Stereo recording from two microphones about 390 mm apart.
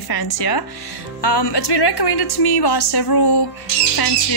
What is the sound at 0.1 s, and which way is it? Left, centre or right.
Speech, left.